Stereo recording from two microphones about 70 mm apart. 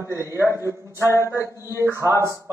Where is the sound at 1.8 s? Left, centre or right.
Right.